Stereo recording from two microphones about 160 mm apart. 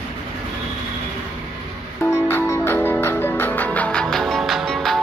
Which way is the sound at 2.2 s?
15° left (ahead or behind).